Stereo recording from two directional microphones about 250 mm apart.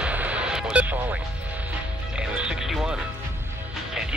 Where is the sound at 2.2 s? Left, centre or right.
Centre.